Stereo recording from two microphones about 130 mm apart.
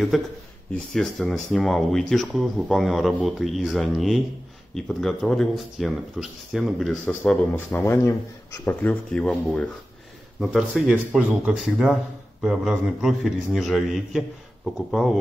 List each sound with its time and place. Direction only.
0.1 s speech: centre (ahead or behind)
7.5 s speech: 15° left (ahead or behind)
10.4 s speech: 5° right (ahead or behind)